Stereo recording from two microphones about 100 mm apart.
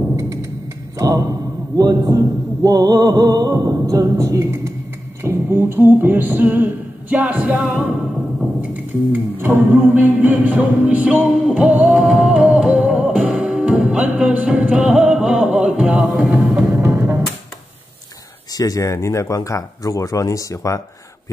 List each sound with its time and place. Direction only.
0.1 s timpani: 30° right (ahead or behind)
0.9 s a sound: 35° right (ahead or behind)
1.8 s mantra: 40° right (ahead or behind)
3.9 s vocal music: 30° right (ahead or behind); by 7.8 s 15° right (ahead or behind)
8.5 s music: 20° right (ahead or behind)
16.7 s music: 20° right (ahead or behind)
18.6 s speech: 35° left (ahead or behind)